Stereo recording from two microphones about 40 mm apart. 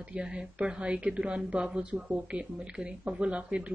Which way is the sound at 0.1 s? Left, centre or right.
Right.